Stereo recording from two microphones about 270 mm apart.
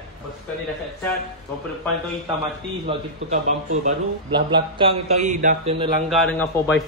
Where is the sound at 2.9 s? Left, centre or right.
Right.